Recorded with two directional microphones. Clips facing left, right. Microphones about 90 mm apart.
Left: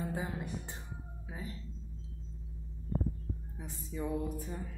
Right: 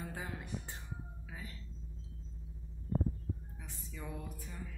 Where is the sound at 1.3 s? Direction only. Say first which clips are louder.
Left 6 dB; 30° left (ahead or behind).